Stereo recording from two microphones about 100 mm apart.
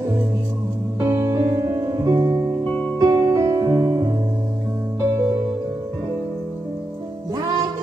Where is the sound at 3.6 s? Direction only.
45° right (ahead or behind).